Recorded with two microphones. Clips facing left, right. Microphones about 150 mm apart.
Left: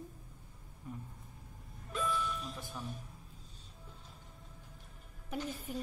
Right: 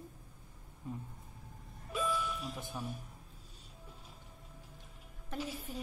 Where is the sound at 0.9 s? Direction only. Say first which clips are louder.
Right 3 dB; 25° right (ahead or behind).